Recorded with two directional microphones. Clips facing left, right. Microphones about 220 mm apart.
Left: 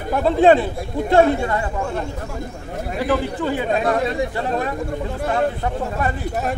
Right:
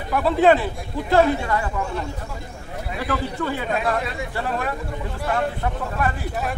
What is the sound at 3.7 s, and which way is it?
Speech, 30° left (ahead or behind).